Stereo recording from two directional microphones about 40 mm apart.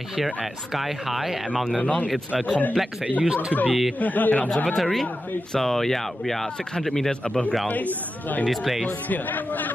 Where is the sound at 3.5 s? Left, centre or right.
Left.